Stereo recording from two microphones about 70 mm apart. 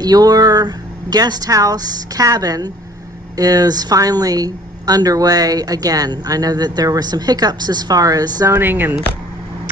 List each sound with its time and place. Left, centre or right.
0.0 s speech: right
8.5 s speech: right